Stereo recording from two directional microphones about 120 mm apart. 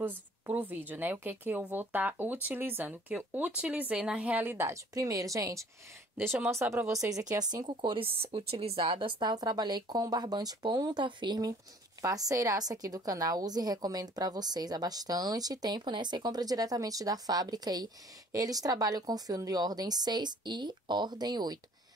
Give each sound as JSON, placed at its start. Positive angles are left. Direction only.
{"t": 0.0, "sound": "a woman's voice", "side_deg": -15}